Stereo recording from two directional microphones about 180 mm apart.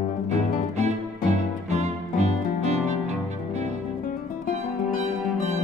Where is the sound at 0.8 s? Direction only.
40° right (ahead or behind).